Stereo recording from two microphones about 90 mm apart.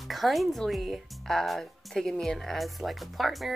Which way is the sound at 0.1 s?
Centre (ahead or behind).